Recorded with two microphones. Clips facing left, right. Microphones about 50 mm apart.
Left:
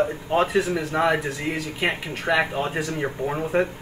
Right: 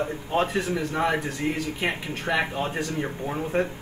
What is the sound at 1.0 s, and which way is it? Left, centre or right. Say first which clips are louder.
Speech: left 5 dB; left.